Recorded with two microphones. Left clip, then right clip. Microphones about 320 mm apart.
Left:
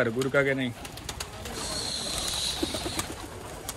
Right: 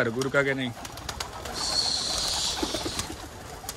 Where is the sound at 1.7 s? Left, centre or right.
Right.